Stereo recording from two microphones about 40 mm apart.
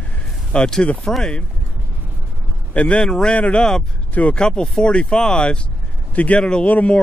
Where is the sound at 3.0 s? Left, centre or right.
Centre.